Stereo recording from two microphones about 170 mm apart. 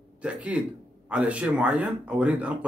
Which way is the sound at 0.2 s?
5° right (ahead or behind).